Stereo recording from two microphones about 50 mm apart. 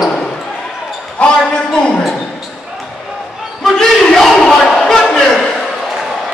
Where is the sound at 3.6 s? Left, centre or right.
Centre.